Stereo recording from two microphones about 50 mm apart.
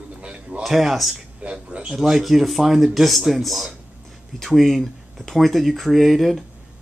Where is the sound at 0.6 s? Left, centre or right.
Centre.